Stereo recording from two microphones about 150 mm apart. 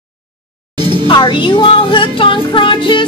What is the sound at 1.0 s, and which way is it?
Music, 35° left (ahead or behind).